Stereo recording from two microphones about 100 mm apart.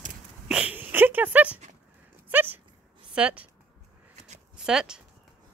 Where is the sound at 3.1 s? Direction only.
10° right (ahead or behind).